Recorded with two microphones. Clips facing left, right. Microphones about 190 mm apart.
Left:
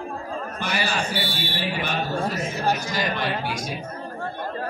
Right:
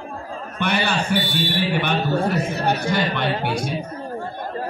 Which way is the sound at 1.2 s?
15° right (ahead or behind).